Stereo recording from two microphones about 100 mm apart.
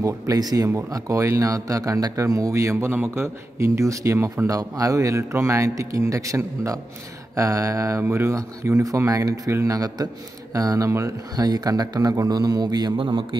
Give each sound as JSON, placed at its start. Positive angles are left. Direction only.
{"t": 0.0, "sound": "speech", "side_deg": -40}
{"t": 12.9, "sound": "a man's voice", "side_deg": -55}